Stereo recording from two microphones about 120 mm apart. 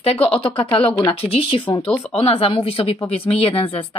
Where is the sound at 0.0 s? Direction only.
55° left (ahead or behind).